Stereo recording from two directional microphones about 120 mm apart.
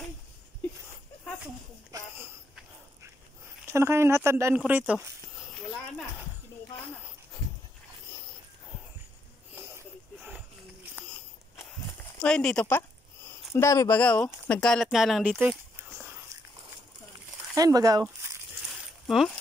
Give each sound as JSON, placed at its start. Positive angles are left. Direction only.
{"t": 1.9, "sound": "a sound", "side_deg": -30}
{"t": 3.7, "sound": "speech", "side_deg": -20}
{"t": 4.6, "sound": "speech", "side_deg": -10}
{"t": 12.2, "sound": "speech", "side_deg": 5}
{"t": 12.6, "sound": "a sound", "side_deg": 20}
{"t": 13.6, "sound": "speech", "side_deg": 25}
{"t": 13.9, "sound": "speech", "side_deg": 10}
{"t": 17.6, "sound": "speech", "side_deg": -30}
{"t": 18.0, "sound": "a sound", "side_deg": -20}
{"t": 19.0, "sound": "speech", "side_deg": 0}